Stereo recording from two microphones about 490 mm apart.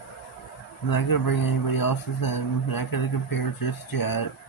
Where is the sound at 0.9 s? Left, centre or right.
Left.